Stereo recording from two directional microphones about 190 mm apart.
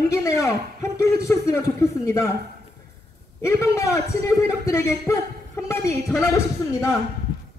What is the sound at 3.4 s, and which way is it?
A man's voice, 15° left (ahead or behind).